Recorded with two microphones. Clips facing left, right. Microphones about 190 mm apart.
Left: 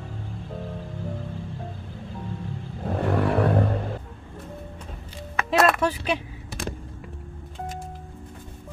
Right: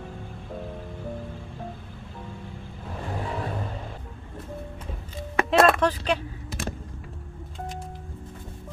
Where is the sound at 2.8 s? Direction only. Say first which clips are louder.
Left 10 dB; 65° left (ahead or behind).